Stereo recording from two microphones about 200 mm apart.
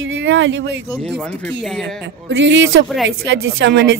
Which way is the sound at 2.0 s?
65° right (ahead or behind).